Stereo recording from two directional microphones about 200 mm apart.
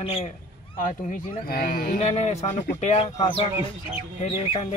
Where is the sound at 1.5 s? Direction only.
45° left (ahead or behind).